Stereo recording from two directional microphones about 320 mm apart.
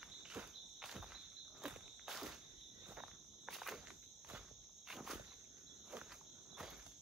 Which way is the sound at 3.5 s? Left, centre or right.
Centre.